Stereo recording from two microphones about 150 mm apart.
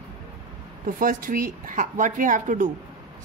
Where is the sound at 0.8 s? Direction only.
65° right (ahead or behind).